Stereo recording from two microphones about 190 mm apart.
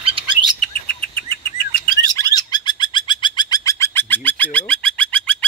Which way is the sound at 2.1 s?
20° left (ahead or behind).